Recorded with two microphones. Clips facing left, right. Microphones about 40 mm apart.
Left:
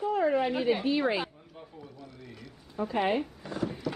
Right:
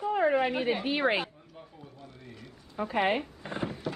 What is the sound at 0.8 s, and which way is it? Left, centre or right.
Speech, right.